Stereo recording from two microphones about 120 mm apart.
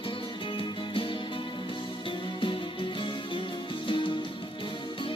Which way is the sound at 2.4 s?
45° left (ahead or behind).